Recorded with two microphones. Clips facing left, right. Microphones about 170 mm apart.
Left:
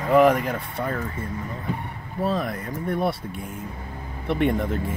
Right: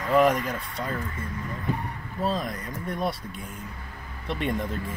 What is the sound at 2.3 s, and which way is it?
Speech, 65° left (ahead or behind).